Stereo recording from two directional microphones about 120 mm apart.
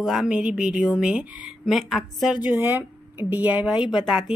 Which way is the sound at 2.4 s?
15° right (ahead or behind).